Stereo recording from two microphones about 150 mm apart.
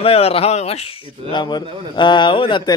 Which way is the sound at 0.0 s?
40° left (ahead or behind).